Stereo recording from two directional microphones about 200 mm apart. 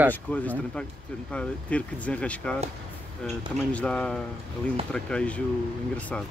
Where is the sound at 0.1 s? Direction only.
10° left (ahead or behind).